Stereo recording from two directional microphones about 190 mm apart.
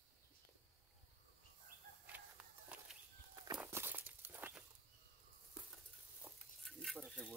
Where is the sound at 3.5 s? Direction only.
10° right (ahead or behind).